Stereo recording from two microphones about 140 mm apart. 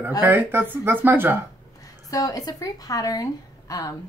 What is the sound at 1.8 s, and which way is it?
A woman's voice, 25° left (ahead or behind).